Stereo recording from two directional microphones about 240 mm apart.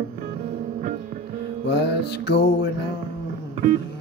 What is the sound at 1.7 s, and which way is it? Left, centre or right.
Music, left.